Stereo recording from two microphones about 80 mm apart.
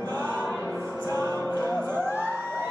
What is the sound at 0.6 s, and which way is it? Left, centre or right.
Music, right.